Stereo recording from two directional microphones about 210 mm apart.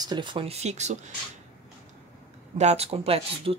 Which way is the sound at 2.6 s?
30° right (ahead or behind).